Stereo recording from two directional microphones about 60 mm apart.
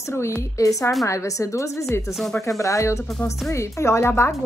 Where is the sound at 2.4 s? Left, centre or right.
Left.